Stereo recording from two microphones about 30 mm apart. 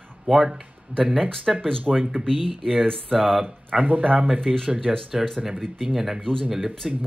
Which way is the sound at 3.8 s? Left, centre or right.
Right.